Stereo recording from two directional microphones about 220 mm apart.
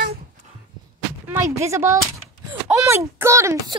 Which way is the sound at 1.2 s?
10° right (ahead or behind).